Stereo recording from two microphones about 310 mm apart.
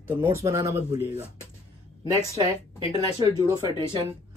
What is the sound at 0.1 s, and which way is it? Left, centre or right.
Speech, centre.